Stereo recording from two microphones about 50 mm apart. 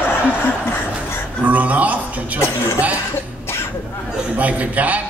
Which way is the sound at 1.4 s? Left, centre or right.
Right.